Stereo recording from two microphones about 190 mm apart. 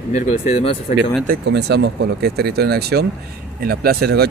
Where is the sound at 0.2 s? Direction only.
35° left (ahead or behind).